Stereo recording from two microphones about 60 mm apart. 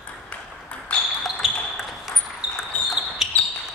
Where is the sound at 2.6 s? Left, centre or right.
Centre.